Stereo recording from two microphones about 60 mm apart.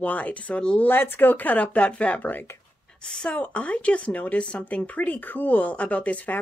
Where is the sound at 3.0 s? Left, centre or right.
Centre.